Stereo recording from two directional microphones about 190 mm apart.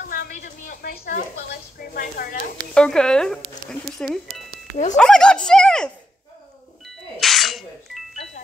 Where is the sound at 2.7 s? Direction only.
5° left (ahead or behind).